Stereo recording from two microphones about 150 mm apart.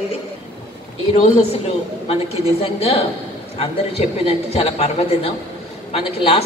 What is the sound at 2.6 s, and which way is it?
A man's voice, 40° left (ahead or behind).